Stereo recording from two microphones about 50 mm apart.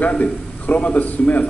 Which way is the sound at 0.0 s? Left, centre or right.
Left.